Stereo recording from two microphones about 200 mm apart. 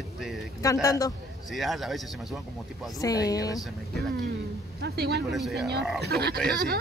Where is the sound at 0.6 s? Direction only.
15° left (ahead or behind).